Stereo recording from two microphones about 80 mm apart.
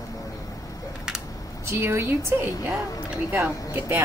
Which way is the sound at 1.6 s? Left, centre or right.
Right.